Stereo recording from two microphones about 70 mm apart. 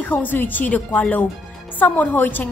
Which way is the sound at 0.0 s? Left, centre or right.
Left.